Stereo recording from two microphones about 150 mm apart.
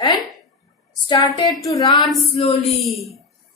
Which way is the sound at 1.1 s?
30° left (ahead or behind).